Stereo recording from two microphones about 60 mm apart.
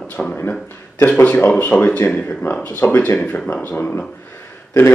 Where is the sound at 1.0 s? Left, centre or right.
Left.